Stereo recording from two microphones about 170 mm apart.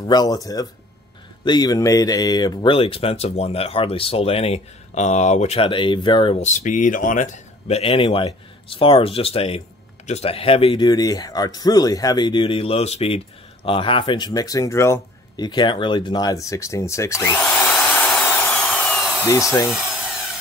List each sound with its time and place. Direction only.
0.0 s speech: 25° left (ahead or behind)
6.4 s speech: 45° left (ahead or behind); by 19.8 s 15° left (ahead or behind)